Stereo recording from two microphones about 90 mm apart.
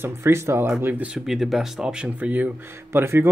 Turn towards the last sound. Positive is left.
turn(degrees=-25)  # may be behind; listen again after turning